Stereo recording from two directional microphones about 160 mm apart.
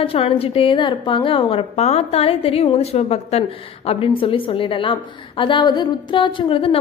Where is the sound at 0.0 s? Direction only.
35° left (ahead or behind).